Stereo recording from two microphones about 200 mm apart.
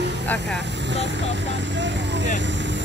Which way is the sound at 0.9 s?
60° right (ahead or behind).